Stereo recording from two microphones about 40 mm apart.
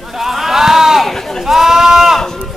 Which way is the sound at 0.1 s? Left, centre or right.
Centre.